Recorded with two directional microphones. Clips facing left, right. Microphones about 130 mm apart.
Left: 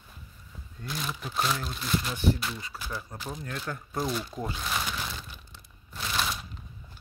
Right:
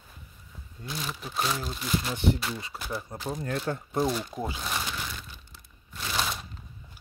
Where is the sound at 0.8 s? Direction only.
5° right (ahead or behind).